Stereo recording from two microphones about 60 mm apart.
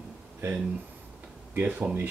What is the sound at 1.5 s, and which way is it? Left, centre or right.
Speech, right.